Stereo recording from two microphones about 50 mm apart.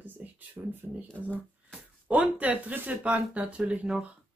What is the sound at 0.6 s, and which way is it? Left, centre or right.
Speech, right.